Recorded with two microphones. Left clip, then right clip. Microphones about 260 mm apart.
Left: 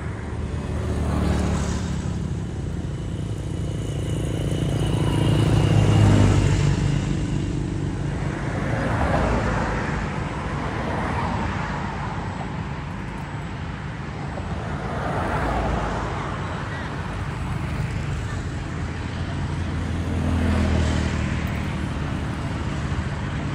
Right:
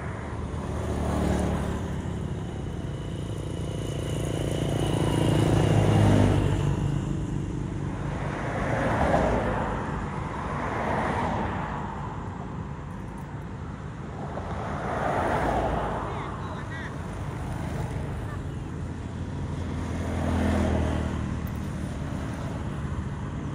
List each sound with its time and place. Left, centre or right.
1.0 s vehicle: right
4.1 s vehicle: right
6.4 s vehicle: right
8.5 s vehicle: right
10.8 s vehicle: right
14.9 s vehicle: right
20.2 s vehicle: right